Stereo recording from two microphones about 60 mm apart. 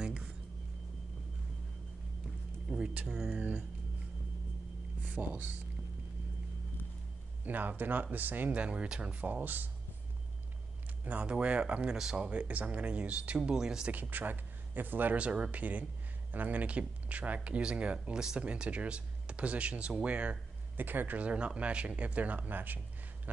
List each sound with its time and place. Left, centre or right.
0.0 s music: centre
2.7 s music: centre
3.1 s speech: centre
3.3 s speech: right
5.0 s speech: right
7.4 s speech: right
11.1 s speech: right
12.3 s speech: right
14.1 s speech: right
20.7 s speech: right